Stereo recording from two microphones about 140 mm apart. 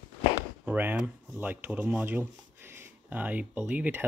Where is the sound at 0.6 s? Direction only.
10° right (ahead or behind).